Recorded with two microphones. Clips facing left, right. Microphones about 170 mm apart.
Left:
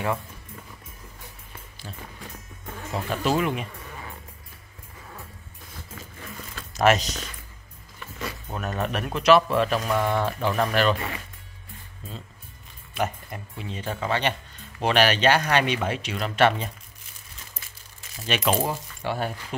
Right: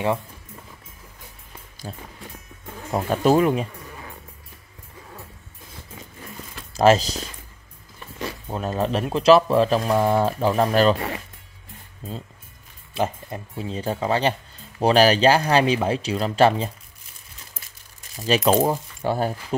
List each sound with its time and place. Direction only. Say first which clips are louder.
1.8 s speech: right 6 dB; 30° right (ahead or behind)
2.9 s speech: right 7 dB; 40° right (ahead or behind)
6.7 s speech: right 4 dB; 30° right (ahead or behind)
12.9 s speech: right 3 dB; 30° right (ahead or behind)
18.2 s speech: right 6 dB; 35° right (ahead or behind)